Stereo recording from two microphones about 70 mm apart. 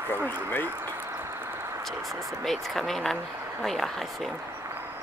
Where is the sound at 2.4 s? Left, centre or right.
Centre.